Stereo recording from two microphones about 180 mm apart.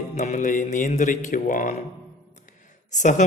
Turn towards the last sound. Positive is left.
turn(degrees=45)  # may be behind; listen again after turning